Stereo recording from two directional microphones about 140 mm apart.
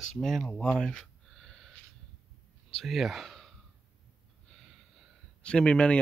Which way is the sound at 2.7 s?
Centre (ahead or behind).